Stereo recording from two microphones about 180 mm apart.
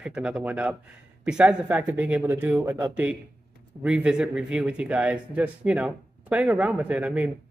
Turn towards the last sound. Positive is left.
turn(degrees=-10)  # may be behind; listen again after turning